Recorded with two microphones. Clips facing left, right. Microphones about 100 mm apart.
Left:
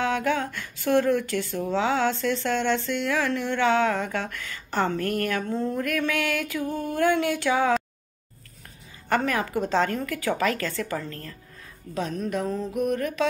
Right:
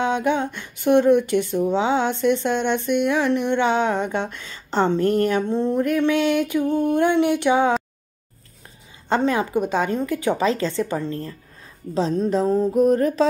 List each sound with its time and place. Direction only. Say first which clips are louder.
0.0 s speech: right 4 dB; 20° right (ahead or behind)
9.1 s speech: right 4 dB; 20° right (ahead or behind)